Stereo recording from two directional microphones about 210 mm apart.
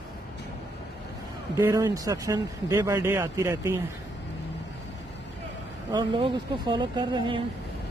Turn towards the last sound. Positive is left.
turn(degrees=-25)  # may be behind; listen again after turning